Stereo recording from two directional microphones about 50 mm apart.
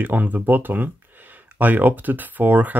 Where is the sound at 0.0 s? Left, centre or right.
Right.